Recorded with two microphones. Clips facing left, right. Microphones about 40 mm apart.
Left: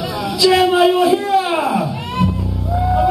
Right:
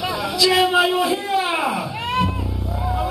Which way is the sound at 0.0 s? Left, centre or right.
Right.